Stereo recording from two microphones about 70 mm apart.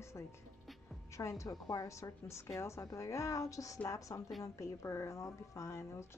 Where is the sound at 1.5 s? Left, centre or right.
Left.